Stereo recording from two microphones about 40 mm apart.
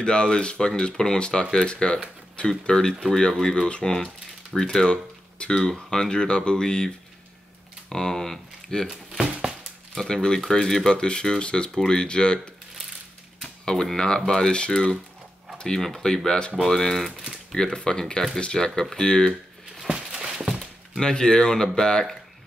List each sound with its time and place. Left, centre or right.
0.0 s speech: left
7.9 s speech: centre
9.2 s a sound: right
10.0 s speech: centre
13.9 s speech: centre
15.5 s a sound: centre
15.8 s speech: centre
20.1 s a sound: centre
21.0 s speech: centre